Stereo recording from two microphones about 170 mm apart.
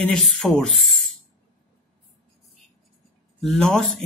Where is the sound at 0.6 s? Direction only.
Centre (ahead or behind).